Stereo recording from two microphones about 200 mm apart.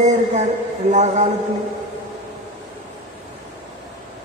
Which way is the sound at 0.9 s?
35° right (ahead or behind).